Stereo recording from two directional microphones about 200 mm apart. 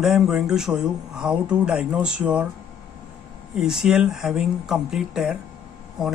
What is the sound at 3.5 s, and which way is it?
Speech, centre (ahead or behind).